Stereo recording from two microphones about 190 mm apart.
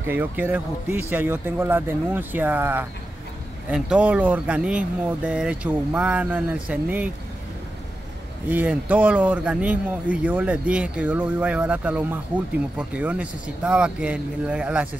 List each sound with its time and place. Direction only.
0.0 s speech: 10° right (ahead or behind)
8.5 s speech: 10° right (ahead or behind)